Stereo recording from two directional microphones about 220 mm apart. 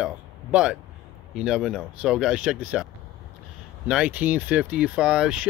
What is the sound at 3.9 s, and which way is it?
Speech, 5° right (ahead or behind).